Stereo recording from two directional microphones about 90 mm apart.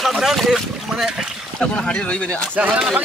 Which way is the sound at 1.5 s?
10° left (ahead or behind).